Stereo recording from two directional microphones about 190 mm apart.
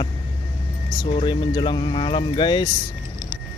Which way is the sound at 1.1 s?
25° left (ahead or behind).